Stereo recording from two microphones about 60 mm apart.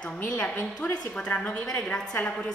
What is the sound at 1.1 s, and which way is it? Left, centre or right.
A woman's voice, centre.